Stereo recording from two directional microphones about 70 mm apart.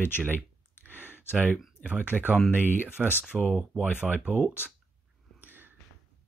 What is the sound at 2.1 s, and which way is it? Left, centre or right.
Speech, centre.